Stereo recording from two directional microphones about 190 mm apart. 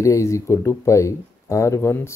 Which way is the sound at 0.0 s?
15° left (ahead or behind).